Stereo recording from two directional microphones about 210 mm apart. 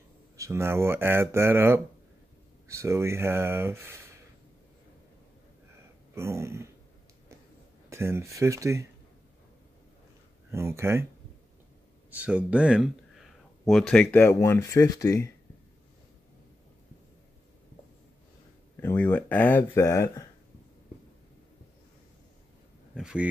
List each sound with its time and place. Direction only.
0.4 s speech: 10° right (ahead or behind)
6.1 s speech: 15° right (ahead or behind)
7.9 s speech: 15° right (ahead or behind)
10.5 s speech: 10° right (ahead or behind)
12.1 s speech: 5° right (ahead or behind); by 15.3 s 15° left (ahead or behind)
18.8 s speech: 10° left (ahead or behind)
22.9 s speech: 5° right (ahead or behind)